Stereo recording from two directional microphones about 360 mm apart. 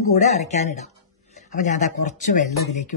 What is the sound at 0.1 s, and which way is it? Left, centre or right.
Speech, centre.